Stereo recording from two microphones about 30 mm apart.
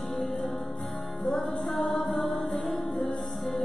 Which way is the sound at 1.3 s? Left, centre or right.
Left.